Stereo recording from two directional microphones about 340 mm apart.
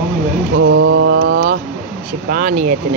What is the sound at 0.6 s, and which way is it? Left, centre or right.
Mantra, right.